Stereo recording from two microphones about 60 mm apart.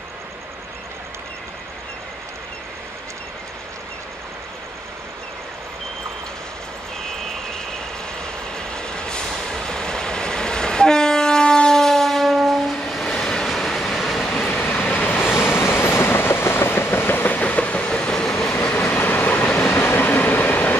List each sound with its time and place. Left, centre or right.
8.5 s train: centre
14.7 s vehicle: left
15.3 s train: left; by 18.5 s centre
18.9 s train: left
19.4 s train: centre
19.8 s train: left